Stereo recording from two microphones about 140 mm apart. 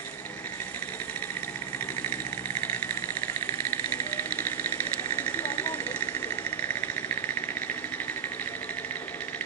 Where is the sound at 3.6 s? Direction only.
15° left (ahead or behind).